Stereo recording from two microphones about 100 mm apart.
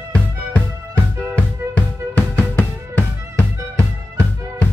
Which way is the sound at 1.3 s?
15° left (ahead or behind).